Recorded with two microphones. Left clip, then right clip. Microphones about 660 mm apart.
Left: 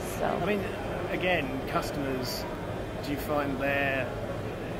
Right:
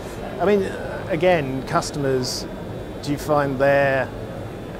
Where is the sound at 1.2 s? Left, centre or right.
Right.